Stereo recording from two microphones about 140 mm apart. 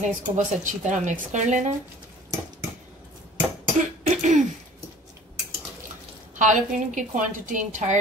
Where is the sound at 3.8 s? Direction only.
60° right (ahead or behind).